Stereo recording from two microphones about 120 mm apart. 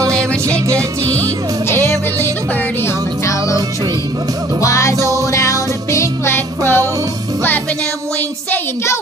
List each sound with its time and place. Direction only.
0.7 s music: 25° right (ahead or behind)
1.7 s music: 20° left (ahead or behind)
4.6 s music: 25° left (ahead or behind)